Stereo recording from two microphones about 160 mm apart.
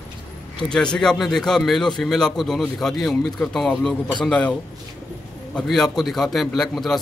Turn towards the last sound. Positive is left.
turn(degrees=0)  # may be behind; listen again after turning